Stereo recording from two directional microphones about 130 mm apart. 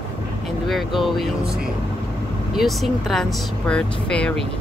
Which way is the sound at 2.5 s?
Centre (ahead or behind).